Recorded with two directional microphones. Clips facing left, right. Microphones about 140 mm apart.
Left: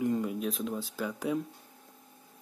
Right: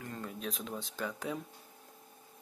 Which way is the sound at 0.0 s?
15° left (ahead or behind).